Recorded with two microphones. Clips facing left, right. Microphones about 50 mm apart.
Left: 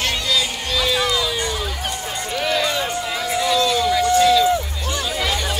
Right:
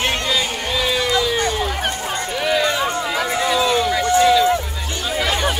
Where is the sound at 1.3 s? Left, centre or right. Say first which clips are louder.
Right 4 dB; right.